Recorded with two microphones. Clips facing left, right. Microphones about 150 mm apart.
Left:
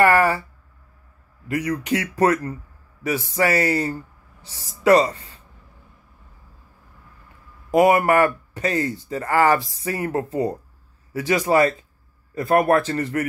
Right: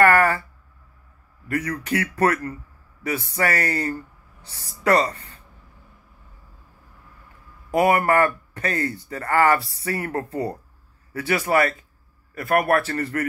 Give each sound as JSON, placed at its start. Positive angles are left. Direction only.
{"t": 0.0, "sound": "speech", "side_deg": 15}
{"t": 1.5, "sound": "speech", "side_deg": 15}
{"t": 7.7, "sound": "speech", "side_deg": 15}